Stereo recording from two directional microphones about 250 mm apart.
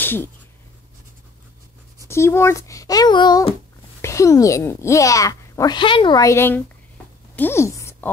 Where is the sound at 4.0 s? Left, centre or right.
Centre.